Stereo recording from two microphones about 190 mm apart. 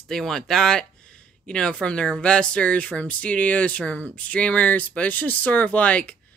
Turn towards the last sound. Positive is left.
turn(degrees=5)  # may be behind; listen again after turning